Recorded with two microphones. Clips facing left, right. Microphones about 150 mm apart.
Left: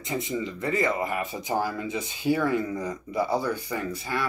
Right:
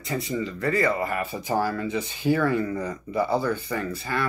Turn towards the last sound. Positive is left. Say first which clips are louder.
# right 2 dB
turn(degrees=10)  # may be behind; listen again after turning